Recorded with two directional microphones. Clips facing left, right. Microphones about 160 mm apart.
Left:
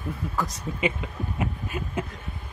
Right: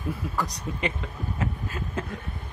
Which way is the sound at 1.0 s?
15° left (ahead or behind).